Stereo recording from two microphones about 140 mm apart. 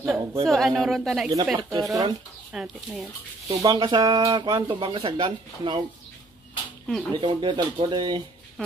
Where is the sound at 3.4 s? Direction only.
25° right (ahead or behind).